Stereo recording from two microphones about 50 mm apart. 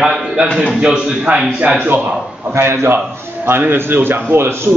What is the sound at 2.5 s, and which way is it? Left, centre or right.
A man's voice, right.